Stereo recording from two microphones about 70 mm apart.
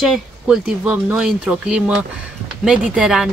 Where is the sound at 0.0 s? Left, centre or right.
Centre.